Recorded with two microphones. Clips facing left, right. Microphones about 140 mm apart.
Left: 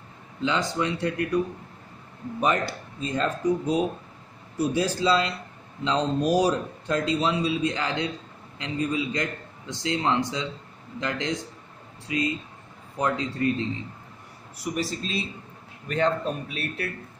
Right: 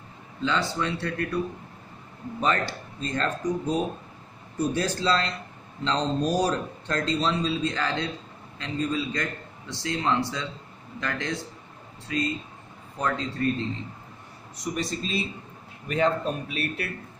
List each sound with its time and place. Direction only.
0.4 s speech: 15° left (ahead or behind)
2.4 s speech: 10° left (ahead or behind)
14.6 s a man's voice: 5° left (ahead or behind)